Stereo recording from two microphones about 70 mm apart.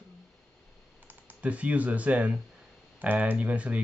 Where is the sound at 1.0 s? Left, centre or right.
Right.